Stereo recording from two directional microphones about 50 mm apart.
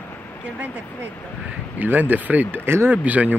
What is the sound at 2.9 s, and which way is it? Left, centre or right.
Speech, right.